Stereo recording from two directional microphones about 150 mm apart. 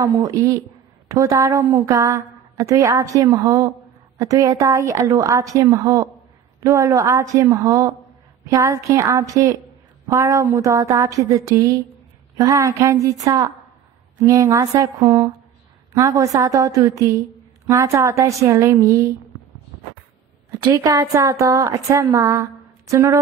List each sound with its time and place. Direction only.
0.0 s speech: 20° right (ahead or behind)
20.6 s speech: 25° right (ahead or behind)